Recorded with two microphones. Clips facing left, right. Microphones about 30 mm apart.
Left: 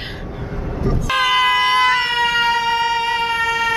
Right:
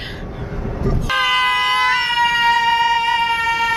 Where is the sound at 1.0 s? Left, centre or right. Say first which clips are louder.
Left 1 dB; centre.